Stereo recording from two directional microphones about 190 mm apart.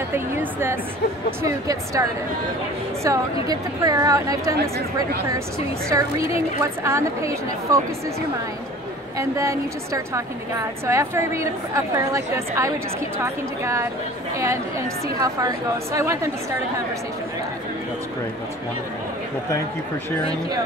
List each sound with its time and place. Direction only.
0.1 s a woman's voice: 10° right (ahead or behind)
3.1 s a woman's voice: 15° right (ahead or behind)
5.9 s a woman's voice: 15° right (ahead or behind)
9.2 s a woman's voice: 15° right (ahead or behind)